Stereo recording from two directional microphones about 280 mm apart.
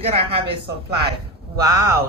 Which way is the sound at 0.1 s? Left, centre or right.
Right.